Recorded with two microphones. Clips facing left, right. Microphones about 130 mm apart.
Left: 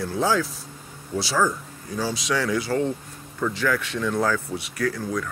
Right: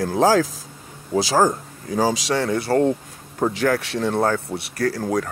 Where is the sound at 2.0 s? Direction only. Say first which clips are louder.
Right 7 dB; 90° right.